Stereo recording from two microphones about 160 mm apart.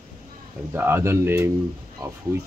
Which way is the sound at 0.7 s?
15° right (ahead or behind).